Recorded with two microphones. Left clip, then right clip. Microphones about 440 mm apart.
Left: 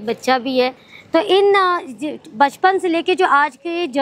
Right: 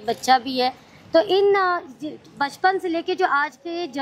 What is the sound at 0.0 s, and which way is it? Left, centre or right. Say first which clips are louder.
Speech: left 1 dB; left.